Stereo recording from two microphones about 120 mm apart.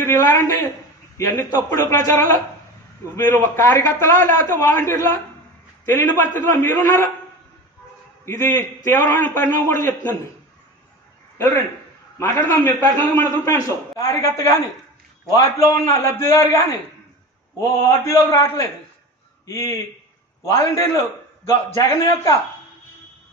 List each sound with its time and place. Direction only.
0.0 s a man's voice: 20° left (ahead or behind)
8.3 s a man's voice: 20° left (ahead or behind)
12.2 s a man's voice: 20° left (ahead or behind)
17.6 s a man's voice: 25° left (ahead or behind)